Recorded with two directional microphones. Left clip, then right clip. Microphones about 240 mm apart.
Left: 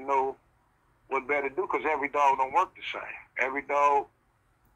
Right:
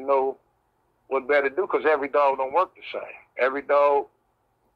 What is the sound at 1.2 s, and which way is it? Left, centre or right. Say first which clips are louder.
Speech: right 7 dB; centre.